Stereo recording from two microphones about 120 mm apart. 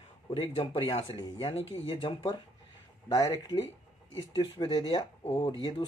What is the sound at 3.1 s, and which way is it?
Speech, 35° left (ahead or behind).